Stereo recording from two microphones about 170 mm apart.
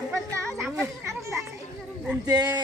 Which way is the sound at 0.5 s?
15° right (ahead or behind).